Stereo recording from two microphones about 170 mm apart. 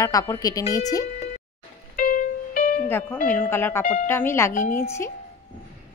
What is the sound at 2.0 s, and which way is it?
Music, 55° left (ahead or behind).